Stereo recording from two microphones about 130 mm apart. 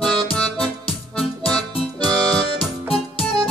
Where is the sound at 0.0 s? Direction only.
5° left (ahead or behind).